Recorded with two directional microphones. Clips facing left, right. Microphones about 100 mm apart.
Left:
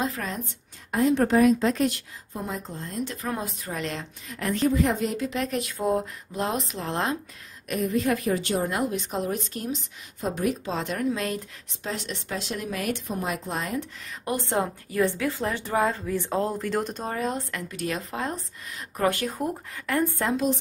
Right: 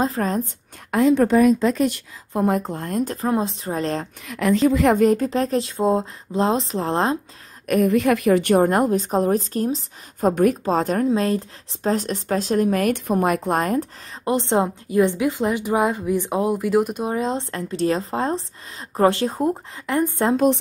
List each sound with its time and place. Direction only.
0.0 s speech: 35° right (ahead or behind)
0.9 s a woman's voice: 90° right
2.3 s speech: 60° right (ahead or behind); by 3.3 s 45° right (ahead or behind)
3.3 s speech: 30° right (ahead or behind)
4.3 s a woman's voice: 85° right
5.0 s speech: 45° right (ahead or behind)
7.6 s speech: 60° right (ahead or behind); by 10.3 s 40° right (ahead or behind)
10.3 s speech: 50° right (ahead or behind)
14.2 s a woman's voice: 25° right (ahead or behind)